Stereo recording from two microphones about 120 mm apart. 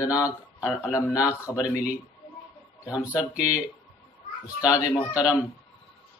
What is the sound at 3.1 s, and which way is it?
Speech, 10° right (ahead or behind).